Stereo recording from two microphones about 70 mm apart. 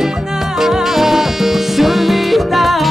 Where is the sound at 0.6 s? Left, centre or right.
Centre.